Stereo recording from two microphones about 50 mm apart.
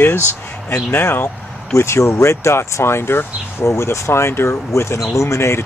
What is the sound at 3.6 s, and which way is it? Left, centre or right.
Speech, left.